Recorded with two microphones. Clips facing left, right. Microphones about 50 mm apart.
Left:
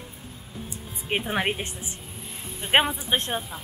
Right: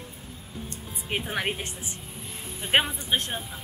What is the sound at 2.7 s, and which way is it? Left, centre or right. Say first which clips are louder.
Speech: left 3 dB; centre.